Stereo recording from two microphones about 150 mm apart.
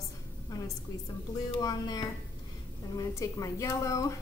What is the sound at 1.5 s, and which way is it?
A woman's voice, 25° left (ahead or behind).